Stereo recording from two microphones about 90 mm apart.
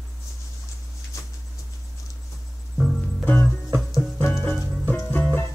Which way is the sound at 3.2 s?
15° left (ahead or behind).